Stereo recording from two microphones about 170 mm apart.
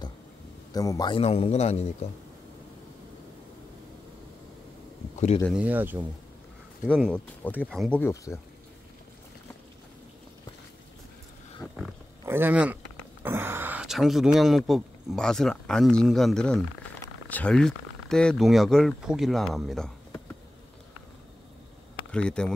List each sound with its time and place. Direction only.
0.7 s a man's voice: 20° left (ahead or behind)
1.2 s a man's voice: 35° left (ahead or behind)
5.5 s speech: 10° right (ahead or behind)
6.9 s speech: 5° left (ahead or behind)
8.0 s speech: 15° left (ahead or behind)
11.6 s pig: 10° right (ahead or behind)
12.3 s speech: 10° right (ahead or behind)
22.1 s speech: 5° left (ahead or behind)